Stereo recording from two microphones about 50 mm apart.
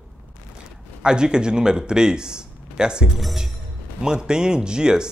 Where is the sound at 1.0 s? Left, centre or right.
Centre.